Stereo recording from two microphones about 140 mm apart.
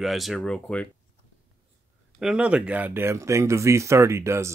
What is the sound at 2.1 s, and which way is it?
Speech, 5° right (ahead or behind).